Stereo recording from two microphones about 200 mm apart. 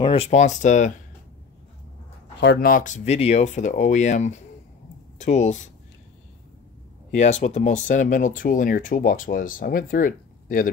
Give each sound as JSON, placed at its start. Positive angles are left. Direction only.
{"t": 0.0, "sound": "speech", "side_deg": 30}
{"t": 2.4, "sound": "speech", "side_deg": 50}
{"t": 7.1, "sound": "speech", "side_deg": 35}